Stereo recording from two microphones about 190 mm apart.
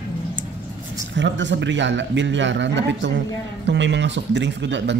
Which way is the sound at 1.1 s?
70° right (ahead or behind).